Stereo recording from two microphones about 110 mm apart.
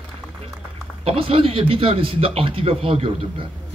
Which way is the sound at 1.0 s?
55° right (ahead or behind).